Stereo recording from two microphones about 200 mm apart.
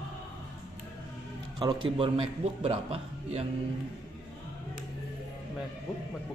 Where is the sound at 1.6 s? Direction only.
25° right (ahead or behind).